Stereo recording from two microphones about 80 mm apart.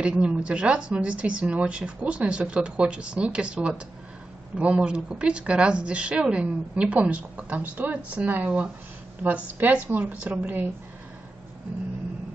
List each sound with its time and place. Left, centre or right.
0.0 s a woman's voice: centre